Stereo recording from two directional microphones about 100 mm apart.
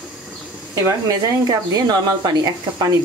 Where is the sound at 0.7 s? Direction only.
35° right (ahead or behind).